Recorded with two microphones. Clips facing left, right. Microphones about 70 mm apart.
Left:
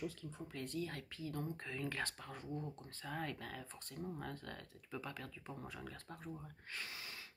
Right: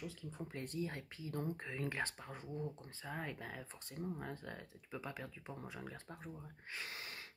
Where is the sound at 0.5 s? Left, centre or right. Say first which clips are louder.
Even; right.